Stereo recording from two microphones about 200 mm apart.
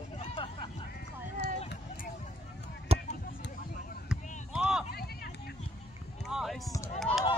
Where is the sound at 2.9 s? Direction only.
30° right (ahead or behind).